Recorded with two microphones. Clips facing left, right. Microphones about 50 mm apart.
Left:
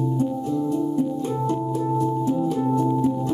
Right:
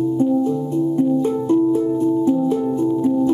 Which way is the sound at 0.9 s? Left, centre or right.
Right.